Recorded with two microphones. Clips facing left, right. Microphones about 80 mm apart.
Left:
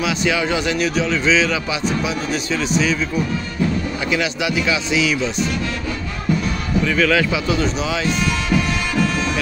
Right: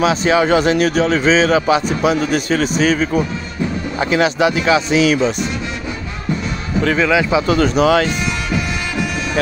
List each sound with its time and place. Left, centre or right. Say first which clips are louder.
0.0 s a man's voice: right 6 dB; right
4.1 s speech: right 7 dB; right
7.0 s speech: right 1 dB; right
7.4 s a man's voice: right 7 dB; right